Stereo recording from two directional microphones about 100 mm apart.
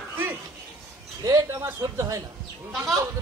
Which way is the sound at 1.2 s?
35° right (ahead or behind).